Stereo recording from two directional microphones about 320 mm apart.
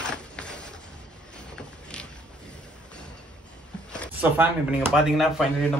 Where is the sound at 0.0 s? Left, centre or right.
Centre.